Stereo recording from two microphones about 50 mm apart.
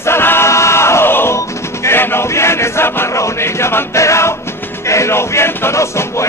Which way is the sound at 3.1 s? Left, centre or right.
Left.